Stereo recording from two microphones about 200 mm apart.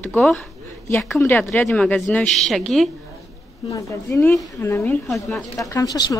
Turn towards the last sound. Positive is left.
turn(degrees=20)  # may be behind; listen again after turning